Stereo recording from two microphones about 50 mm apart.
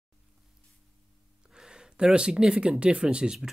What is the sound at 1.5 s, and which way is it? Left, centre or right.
Speech, centre.